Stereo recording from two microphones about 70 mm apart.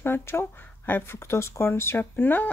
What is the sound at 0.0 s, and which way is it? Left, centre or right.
Speech, left.